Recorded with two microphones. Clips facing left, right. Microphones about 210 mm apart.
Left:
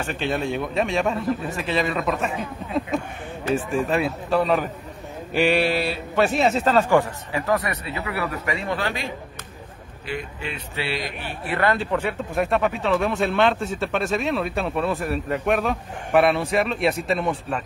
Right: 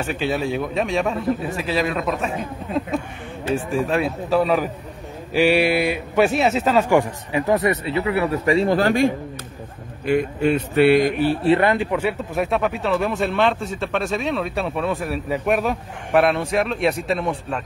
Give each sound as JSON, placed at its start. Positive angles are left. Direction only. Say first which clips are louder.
{"t": 0.1, "sound": "speech", "louder": "right 2 dB", "side_deg": -5}
{"t": 3.5, "sound": "a man's voice", "louder": "right 1 dB", "side_deg": 0}
{"t": 11.4, "sound": "speech", "louder": "right 3 dB", "side_deg": -20}